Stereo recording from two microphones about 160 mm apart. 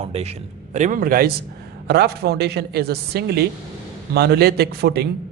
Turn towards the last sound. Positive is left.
turn(degrees=-90)